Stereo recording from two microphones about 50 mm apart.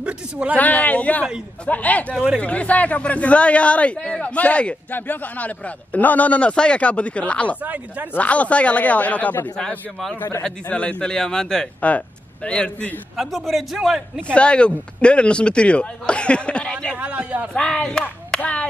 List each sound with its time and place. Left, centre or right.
0.0 s a woman's voice: right
0.6 s speech: left
4.9 s speech: left
7.6 s speech: right
8.2 s speech: left
10.4 s a man's voice: left
13.2 s a man's voice: centre
14.3 s speech: left
17.0 s a woman's voice: right
17.6 s a man's voice: centre
18.4 s speech: left